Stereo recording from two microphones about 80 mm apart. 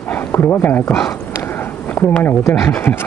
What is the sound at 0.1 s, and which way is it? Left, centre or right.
Speech, left.